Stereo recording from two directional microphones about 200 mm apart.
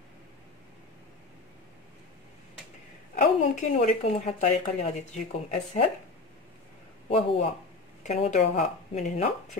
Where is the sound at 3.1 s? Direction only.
35° left (ahead or behind).